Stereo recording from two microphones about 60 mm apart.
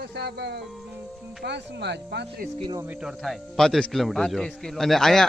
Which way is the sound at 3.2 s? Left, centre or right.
Centre.